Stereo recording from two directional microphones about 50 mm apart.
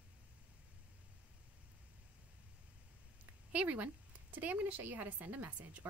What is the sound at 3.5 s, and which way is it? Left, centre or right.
Speech, right.